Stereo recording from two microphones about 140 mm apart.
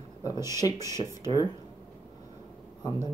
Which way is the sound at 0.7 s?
20° right (ahead or behind).